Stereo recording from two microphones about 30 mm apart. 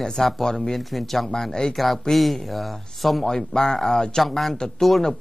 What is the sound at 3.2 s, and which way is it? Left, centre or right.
Speech, centre.